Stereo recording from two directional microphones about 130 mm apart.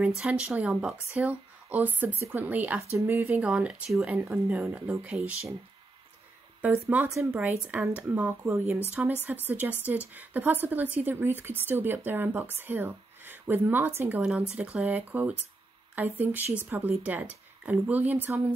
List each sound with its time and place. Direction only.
0.2 s a woman's voice: 10° right (ahead or behind)
6.9 s a woman's voice: 20° right (ahead or behind)